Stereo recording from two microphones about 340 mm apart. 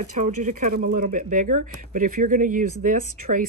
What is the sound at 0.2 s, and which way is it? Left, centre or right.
Speech, right.